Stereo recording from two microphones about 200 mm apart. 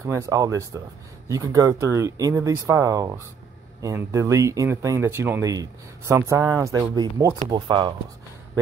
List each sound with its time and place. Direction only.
0.0 s speech: 15° right (ahead or behind)